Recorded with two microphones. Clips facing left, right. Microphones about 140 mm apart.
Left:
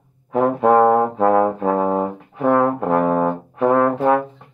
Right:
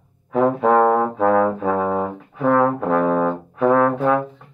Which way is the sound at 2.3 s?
20° left (ahead or behind).